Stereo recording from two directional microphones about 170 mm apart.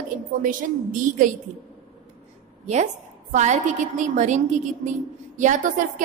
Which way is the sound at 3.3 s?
45° right (ahead or behind).